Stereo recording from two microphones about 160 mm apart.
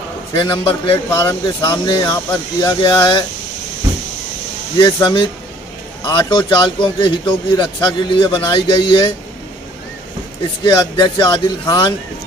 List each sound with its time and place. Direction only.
0.4 s a man's voice: 30° left (ahead or behind)
4.8 s a man's voice: 30° left (ahead or behind)
10.6 s a man's voice: 30° left (ahead or behind)